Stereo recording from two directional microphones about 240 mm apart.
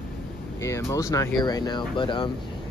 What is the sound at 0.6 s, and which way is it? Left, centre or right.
Speech, centre.